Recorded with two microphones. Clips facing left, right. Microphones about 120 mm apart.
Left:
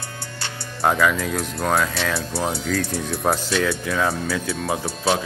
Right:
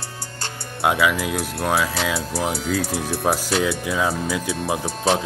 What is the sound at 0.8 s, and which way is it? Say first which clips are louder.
Speech: even; 5° right (ahead or behind).